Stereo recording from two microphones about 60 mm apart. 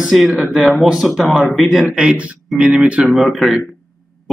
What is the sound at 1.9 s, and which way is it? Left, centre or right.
Speech, centre.